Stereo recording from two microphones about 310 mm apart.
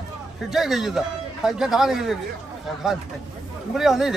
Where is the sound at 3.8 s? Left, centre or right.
Centre.